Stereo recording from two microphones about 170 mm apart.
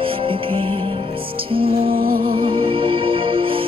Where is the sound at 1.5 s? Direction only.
35° right (ahead or behind).